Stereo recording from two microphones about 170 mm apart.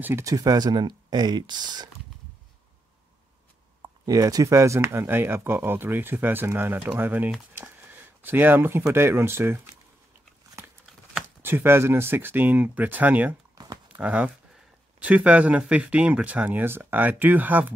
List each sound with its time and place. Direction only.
0.0 s speech: 15° right (ahead or behind)
4.0 s speech: 20° right (ahead or behind)
11.4 s speech: 15° right (ahead or behind)